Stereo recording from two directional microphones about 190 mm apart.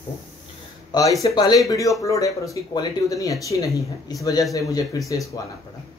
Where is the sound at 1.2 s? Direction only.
20° left (ahead or behind).